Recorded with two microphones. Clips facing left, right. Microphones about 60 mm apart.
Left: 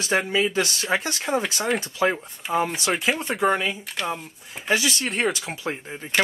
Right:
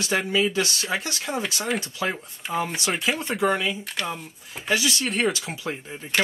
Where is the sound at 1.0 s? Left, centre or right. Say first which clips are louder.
Left 4 dB; left.